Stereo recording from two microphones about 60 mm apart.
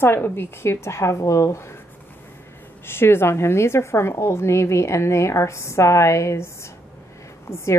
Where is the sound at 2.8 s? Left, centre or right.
Left.